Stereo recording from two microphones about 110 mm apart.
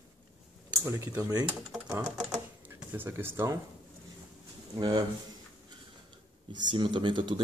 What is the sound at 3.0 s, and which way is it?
Speech, 20° right (ahead or behind).